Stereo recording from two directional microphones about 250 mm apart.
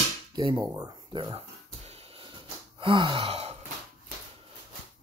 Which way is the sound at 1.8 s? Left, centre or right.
Right.